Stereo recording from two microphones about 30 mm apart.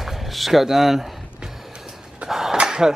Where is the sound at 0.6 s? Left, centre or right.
Centre.